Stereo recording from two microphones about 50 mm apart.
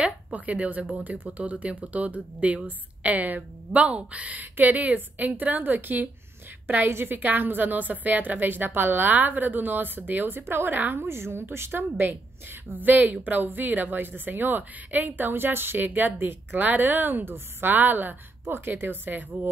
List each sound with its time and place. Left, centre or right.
0.3 s speech: right
6.9 s a woman's voice: right
7.2 s a woman's voice: right
11.1 s a woman's voice: right